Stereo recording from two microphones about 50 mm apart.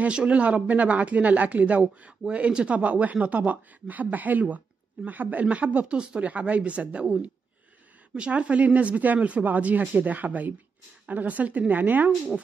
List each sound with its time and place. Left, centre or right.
0.1 s speech: right
8.3 s speech: right